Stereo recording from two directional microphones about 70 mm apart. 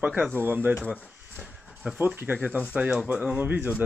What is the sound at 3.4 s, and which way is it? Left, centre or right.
Speech, right.